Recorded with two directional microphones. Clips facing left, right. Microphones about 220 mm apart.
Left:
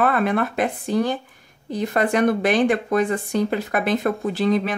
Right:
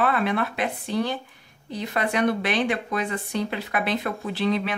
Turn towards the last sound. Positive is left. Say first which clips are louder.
# left 4 dB
turn(degrees=45)  # may be behind; listen again after turning